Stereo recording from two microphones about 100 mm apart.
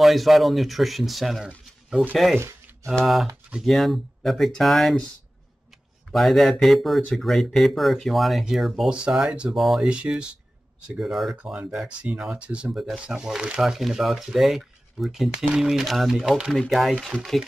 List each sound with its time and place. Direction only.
0.0 s speech: centre (ahead or behind)
2.3 s a sound: 25° right (ahead or behind)
3.6 s speech: centre (ahead or behind)
6.1 s speech: centre (ahead or behind)